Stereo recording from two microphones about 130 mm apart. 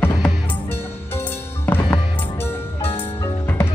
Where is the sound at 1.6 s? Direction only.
15° left (ahead or behind).